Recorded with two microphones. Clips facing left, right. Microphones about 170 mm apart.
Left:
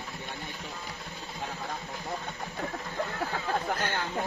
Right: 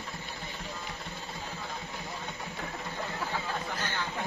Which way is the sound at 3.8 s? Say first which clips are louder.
Left 3 dB; 50° left (ahead or behind).